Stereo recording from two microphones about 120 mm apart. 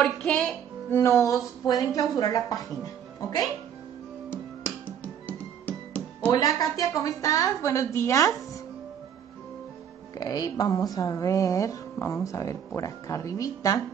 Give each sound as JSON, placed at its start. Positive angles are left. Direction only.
{"t": 0.0, "sound": "speech", "side_deg": 10}
{"t": 4.8, "sound": "music", "side_deg": 15}
{"t": 6.3, "sound": "speech", "side_deg": 30}
{"t": 10.1, "sound": "speech", "side_deg": 30}